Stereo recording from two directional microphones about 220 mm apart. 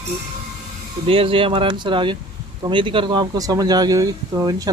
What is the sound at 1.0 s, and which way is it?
Speech, 25° right (ahead or behind).